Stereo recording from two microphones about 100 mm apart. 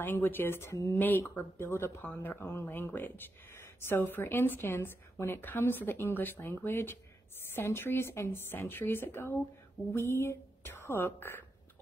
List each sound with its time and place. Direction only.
0.0 s a woman's voice: 20° left (ahead or behind)